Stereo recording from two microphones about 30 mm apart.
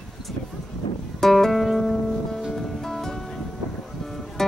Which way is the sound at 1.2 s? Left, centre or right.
Centre.